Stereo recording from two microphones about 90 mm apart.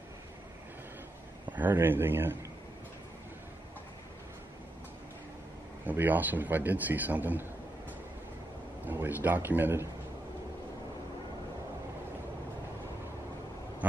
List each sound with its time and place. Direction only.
1.5 s a man's voice: 20° right (ahead or behind)
5.9 s a man's voice: 20° right (ahead or behind)
8.8 s speech: 20° right (ahead or behind)